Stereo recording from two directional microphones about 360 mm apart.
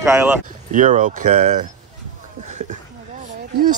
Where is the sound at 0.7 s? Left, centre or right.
Right.